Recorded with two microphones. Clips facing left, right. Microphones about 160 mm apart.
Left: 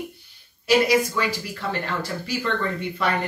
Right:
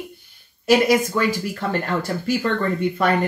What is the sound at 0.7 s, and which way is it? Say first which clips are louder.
Speech: right 3 dB; 45° right (ahead or behind).